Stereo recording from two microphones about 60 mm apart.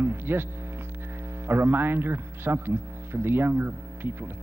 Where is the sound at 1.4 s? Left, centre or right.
Right.